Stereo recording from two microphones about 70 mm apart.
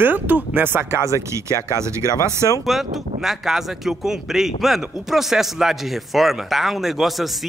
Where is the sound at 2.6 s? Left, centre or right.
Centre.